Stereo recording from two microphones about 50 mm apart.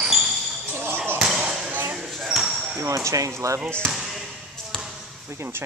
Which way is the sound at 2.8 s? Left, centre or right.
Right.